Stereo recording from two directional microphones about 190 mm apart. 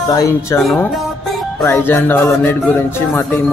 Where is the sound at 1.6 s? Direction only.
15° left (ahead or behind).